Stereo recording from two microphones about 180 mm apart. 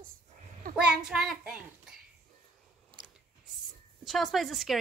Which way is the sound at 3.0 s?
25° right (ahead or behind).